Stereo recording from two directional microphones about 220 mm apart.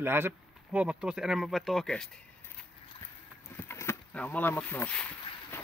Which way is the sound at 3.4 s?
10° left (ahead or behind).